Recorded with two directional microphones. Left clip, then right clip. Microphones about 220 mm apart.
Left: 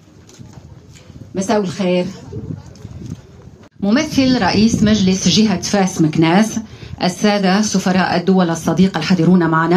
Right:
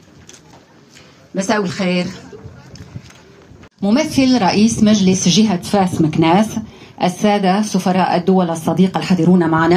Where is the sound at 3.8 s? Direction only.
15° right (ahead or behind).